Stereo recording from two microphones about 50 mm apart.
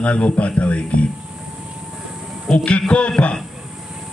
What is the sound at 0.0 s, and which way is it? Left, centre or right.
A man's voice, left.